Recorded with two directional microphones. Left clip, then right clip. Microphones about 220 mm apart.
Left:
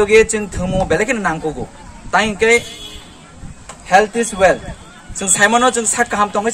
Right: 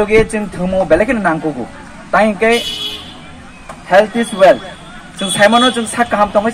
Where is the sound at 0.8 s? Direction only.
30° left (ahead or behind).